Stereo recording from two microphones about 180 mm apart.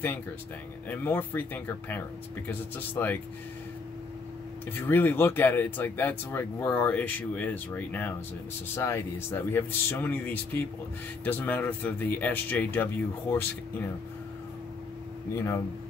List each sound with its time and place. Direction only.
0.8 s speech: 10° left (ahead or behind)
4.7 s speech: 10° left (ahead or behind)
15.3 s speech: 15° left (ahead or behind)